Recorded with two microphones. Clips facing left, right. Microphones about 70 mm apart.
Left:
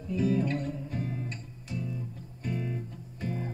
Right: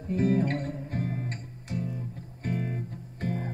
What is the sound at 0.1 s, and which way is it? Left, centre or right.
Music, right.